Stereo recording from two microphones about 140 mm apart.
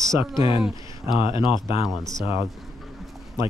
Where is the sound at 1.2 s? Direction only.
40° left (ahead or behind).